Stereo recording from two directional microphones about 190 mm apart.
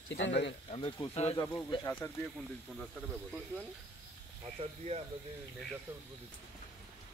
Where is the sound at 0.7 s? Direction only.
30° left (ahead or behind).